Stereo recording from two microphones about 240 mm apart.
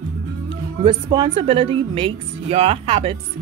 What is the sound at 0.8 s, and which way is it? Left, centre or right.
Speech, right.